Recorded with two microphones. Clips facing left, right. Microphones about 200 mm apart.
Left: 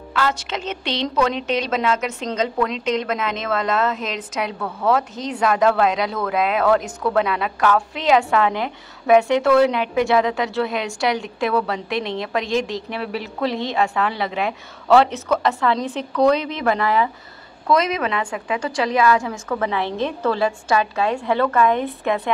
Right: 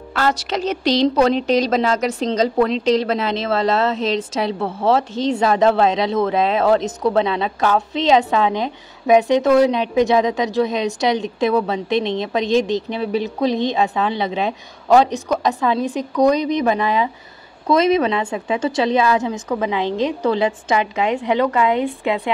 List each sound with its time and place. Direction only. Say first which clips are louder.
0.1 s a woman's voice: right 3 dB; 40° right (ahead or behind); by 22.3 s 15° right (ahead or behind)